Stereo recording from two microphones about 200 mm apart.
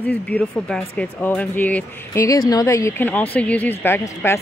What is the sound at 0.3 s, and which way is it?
Speech, 5° left (ahead or behind).